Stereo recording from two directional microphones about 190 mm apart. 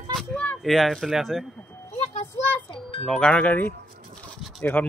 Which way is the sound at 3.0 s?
5° left (ahead or behind).